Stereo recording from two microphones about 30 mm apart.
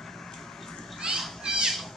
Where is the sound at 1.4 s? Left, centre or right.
Centre.